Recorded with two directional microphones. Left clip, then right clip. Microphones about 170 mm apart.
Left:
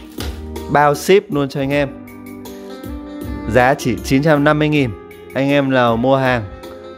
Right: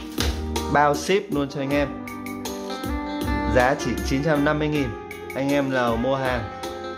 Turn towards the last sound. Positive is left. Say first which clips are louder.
# left 8 dB
turn(degrees=50)  # may be behind; listen again after turning